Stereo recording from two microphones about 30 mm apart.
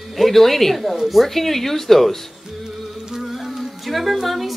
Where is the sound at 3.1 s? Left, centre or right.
Centre.